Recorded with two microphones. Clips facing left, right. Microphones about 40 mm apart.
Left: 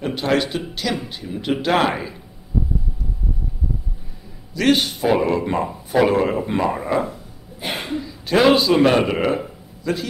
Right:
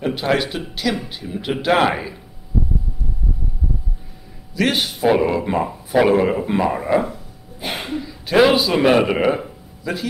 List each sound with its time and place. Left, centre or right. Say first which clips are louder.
0.0 s speech: right 1 dB; centre
4.6 s speech: left 2 dB; centre
8.3 s speech: even; centre